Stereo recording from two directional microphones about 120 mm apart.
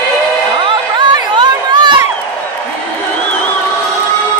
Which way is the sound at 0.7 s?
40° right (ahead or behind).